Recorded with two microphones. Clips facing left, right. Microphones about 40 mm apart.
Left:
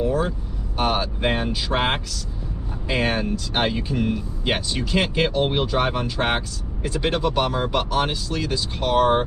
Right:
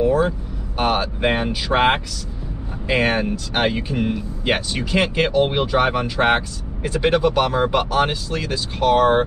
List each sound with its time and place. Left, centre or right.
0.0 s vehicle: centre
0.7 s speech: centre
2.9 s speech: centre